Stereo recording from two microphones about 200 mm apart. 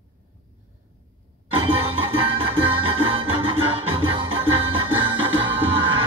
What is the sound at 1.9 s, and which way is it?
Music, 25° right (ahead or behind).